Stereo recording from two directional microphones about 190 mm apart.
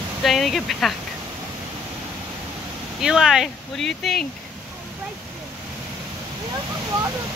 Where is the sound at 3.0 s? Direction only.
Centre (ahead or behind).